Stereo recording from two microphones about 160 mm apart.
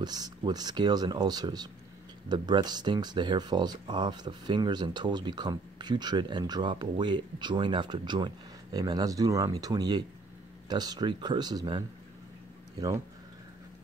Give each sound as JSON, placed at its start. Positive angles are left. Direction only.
{"t": 0.0, "sound": "speech", "side_deg": -25}